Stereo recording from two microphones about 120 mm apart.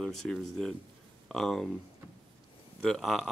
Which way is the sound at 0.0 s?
5° left (ahead or behind).